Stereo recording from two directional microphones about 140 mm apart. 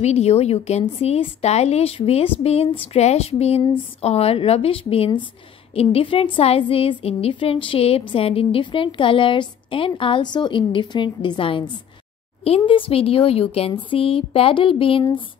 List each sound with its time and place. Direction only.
0.0 s a woman's voice: 50° left (ahead or behind)